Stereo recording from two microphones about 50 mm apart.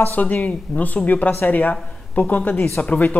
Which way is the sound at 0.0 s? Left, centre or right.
Left.